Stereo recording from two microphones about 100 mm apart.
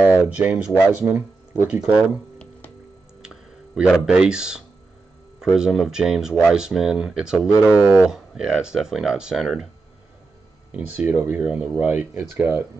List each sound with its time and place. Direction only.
0.0 s a sound: 15° right (ahead or behind)
0.8 s speech: 15° right (ahead or behind)
3.2 s computer keyboard: 5° right (ahead or behind)
5.4 s speech: 5° right (ahead or behind)
10.7 s speech: 15° right (ahead or behind)